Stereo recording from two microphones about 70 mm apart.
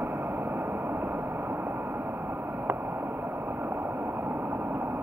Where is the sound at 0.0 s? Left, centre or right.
Right.